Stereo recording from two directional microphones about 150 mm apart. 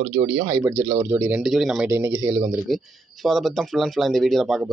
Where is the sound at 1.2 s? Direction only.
5° right (ahead or behind).